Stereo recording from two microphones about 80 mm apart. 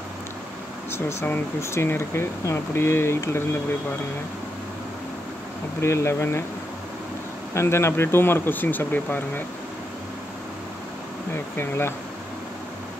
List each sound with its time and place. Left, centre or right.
0.9 s speech: left
5.8 s speech: left
7.5 s speech: left
11.3 s speech: left